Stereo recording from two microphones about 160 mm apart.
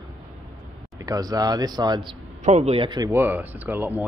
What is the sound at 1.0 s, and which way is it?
Speech, 25° right (ahead or behind).